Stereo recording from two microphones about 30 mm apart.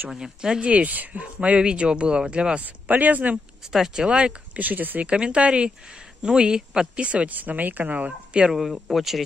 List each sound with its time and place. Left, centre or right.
0.1 s a man's voice: right
0.6 s speech: right
0.8 s speech: right
1.2 s speech: right
1.6 s speech: right
2.6 s speech: right
3.9 s speech: right
4.6 s speech: right
5.0 s a man's voice: right
7.0 s speech: right
7.2 s speech: right
7.8 s speech: right
8.5 s speech: centre